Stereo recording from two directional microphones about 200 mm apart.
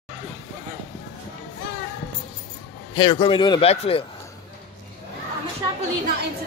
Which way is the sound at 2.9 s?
25° left (ahead or behind).